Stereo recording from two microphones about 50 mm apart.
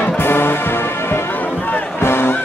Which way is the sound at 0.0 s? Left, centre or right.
Left.